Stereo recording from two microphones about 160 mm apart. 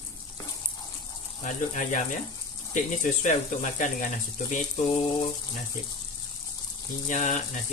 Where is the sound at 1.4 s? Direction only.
50° left (ahead or behind).